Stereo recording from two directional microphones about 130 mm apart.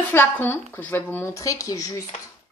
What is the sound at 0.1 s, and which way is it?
A woman's voice, 15° left (ahead or behind).